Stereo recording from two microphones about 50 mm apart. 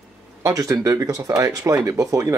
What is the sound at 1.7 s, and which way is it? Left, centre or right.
Speech, right.